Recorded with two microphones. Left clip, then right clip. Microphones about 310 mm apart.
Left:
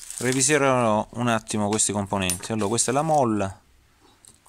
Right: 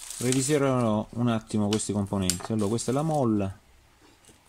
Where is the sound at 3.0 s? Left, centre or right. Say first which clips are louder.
Left 6 dB; left.